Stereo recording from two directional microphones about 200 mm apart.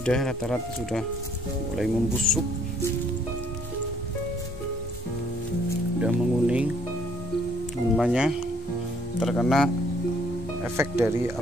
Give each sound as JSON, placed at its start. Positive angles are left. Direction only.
{"t": 0.0, "sound": "speech", "side_deg": 5}
{"t": 5.9, "sound": "speech", "side_deg": -5}
{"t": 7.9, "sound": "speech", "side_deg": -5}
{"t": 10.8, "sound": "speech", "side_deg": -15}